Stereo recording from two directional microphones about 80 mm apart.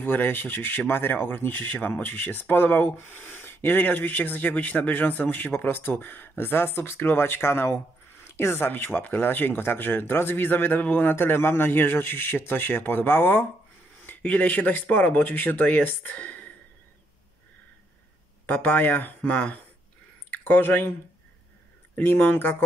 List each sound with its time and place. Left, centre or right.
0.0 s speech: left
18.5 s speech: left
21.9 s speech: left